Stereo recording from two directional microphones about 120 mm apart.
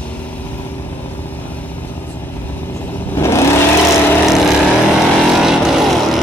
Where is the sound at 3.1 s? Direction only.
25° left (ahead or behind).